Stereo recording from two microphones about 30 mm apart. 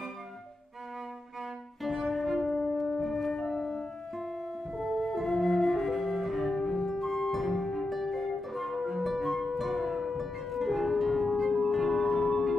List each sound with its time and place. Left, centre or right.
1.8 s music: centre
3.3 s music: centre
5.0 s flute: centre
6.9 s music: centre
8.1 s music: centre